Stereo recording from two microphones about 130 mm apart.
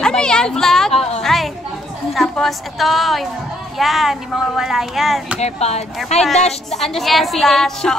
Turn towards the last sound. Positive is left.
turn(degrees=5)  # may be behind; listen again after turning